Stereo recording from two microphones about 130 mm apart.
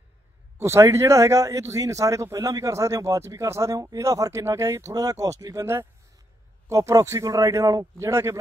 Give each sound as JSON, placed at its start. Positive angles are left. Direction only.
{"t": 0.6, "sound": "speech", "side_deg": -20}